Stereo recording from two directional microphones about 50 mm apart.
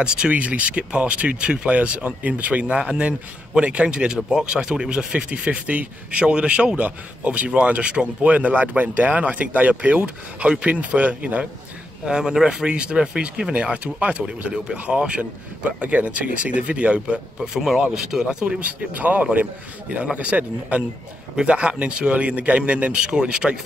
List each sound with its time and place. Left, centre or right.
0.0 s a man's voice: centre
12.1 s a man's voice: centre
17.4 s speech: centre
18.2 s a man's voice: centre
18.6 s a man's voice: right